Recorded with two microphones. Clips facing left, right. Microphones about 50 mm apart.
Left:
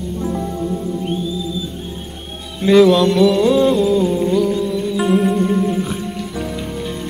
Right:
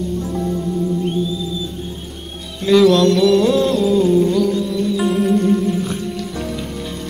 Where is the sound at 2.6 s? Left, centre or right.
Centre.